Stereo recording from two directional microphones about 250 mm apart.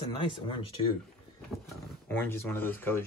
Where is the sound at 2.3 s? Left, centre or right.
Centre.